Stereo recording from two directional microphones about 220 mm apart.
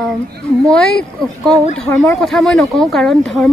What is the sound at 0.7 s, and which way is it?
Speech, 5° left (ahead or behind).